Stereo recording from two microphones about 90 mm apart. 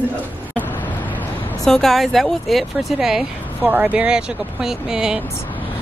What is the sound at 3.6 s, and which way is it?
Speech, 20° right (ahead or behind).